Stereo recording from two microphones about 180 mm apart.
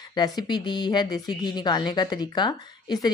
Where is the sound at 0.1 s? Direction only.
20° left (ahead or behind).